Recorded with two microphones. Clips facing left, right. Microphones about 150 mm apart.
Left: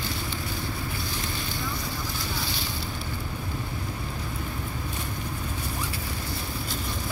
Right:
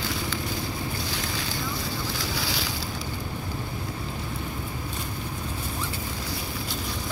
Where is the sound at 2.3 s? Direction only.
90° right.